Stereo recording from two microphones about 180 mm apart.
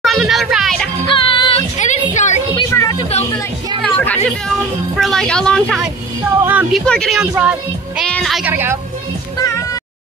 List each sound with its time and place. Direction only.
0.0 s a child's voice: centre (ahead or behind)
1.0 s music: 30° left (ahead or behind)
1.8 s music: 40° left (ahead or behind)
2.5 s a sound: 20° left (ahead or behind)
3.8 s chatter: 10° left (ahead or behind)
4.9 s a woman's voice: centre (ahead or behind)
6.4 s a woman's voice: 10° right (ahead or behind)
8.0 s music: centre (ahead or behind)
8.5 s a woman's voice: 10° right (ahead or behind)